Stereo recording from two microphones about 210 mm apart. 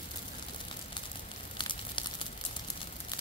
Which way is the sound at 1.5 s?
25° left (ahead or behind).